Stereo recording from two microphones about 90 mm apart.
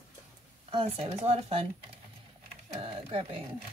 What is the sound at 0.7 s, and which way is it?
Speech, 80° right.